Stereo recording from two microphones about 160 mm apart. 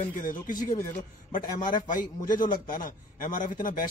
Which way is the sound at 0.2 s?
60° left (ahead or behind).